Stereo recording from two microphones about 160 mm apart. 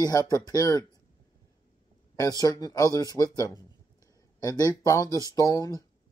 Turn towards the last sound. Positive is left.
turn(degrees=20)  # may be behind; listen again after turning